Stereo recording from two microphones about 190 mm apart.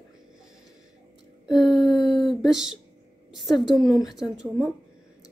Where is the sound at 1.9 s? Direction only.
25° left (ahead or behind).